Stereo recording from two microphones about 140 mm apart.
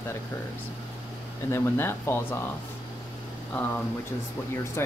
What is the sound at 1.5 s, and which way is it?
Speech, 15° left (ahead or behind).